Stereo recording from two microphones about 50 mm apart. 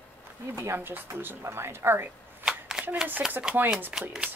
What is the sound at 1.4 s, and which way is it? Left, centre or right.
Speech, right.